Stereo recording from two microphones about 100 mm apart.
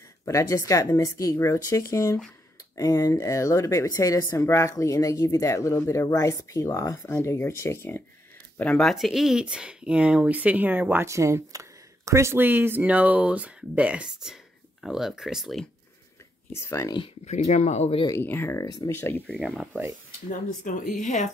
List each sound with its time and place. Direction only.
0.2 s speech: 30° left (ahead or behind)
8.5 s speech: 15° left (ahead or behind)
8.8 s speech: centre (ahead or behind)
16.5 s speech: 25° left (ahead or behind)
17.2 s speech: 90° left
18.1 s speech: 25° left (ahead or behind)
19.3 s speech: 5° right (ahead or behind)